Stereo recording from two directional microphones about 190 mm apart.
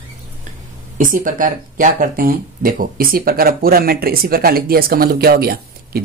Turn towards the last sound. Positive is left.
turn(degrees=-55)  # may be behind; listen again after turning